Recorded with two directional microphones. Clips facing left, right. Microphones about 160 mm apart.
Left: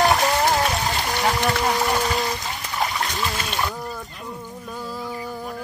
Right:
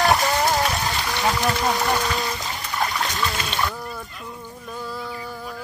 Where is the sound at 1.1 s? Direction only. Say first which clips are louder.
Even; 20° left (ahead or behind).